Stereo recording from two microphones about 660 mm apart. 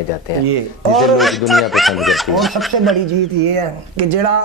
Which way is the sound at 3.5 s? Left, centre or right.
Right.